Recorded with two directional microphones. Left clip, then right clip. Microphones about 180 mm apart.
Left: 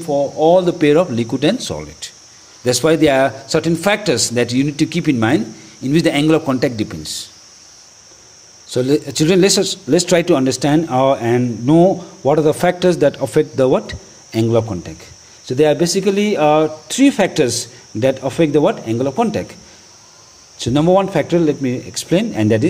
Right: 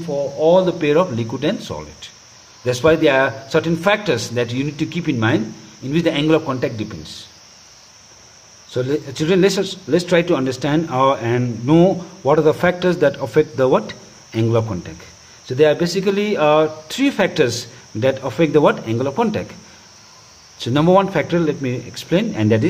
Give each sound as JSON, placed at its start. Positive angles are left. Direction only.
{"t": 0.4, "sound": "a man's voice", "side_deg": 30}
{"t": 8.6, "sound": "a man's voice", "side_deg": 30}
{"t": 20.5, "sound": "a man's voice", "side_deg": 15}